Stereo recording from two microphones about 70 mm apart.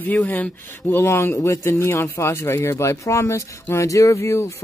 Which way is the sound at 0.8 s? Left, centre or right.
Left.